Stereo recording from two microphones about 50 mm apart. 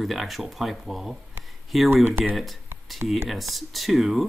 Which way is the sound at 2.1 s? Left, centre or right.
Right.